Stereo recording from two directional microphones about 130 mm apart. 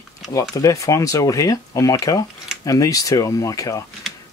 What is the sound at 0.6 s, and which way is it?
Speech, 25° left (ahead or behind).